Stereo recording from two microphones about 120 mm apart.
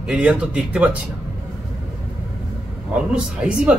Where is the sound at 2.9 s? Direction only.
10° right (ahead or behind).